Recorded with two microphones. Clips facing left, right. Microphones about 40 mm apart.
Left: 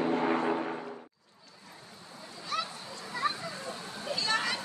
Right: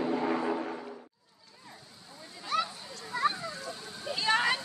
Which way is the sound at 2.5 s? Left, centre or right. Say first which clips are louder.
Right 3 dB; centre.